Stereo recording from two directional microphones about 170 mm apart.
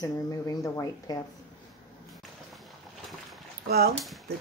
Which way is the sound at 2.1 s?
Centre (ahead or behind).